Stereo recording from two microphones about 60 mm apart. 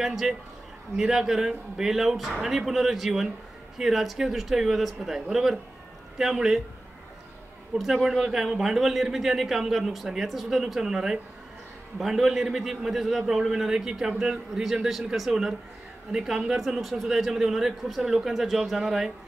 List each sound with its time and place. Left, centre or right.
0.0 s a man's voice: centre
7.7 s a man's voice: centre